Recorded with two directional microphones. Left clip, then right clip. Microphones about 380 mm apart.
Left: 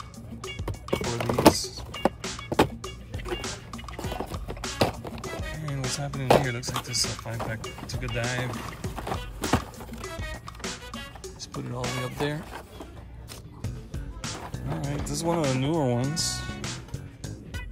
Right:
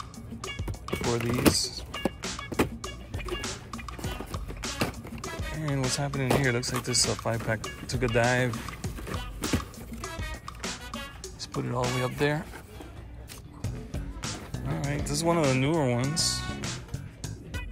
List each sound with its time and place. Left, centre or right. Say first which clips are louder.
0.4 s music: left 1 dB; centre
4.7 s music: left 7 dB; left
5.1 s music: left 1 dB; centre
13.6 s music: right 5 dB; centre